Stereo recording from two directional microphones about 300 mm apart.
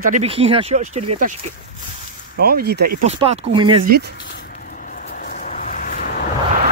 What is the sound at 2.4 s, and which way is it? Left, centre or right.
Speech, right.